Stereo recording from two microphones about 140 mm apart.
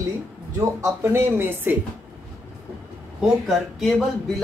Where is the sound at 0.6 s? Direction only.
20° right (ahead or behind).